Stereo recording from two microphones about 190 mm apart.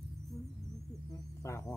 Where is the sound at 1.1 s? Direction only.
15° left (ahead or behind).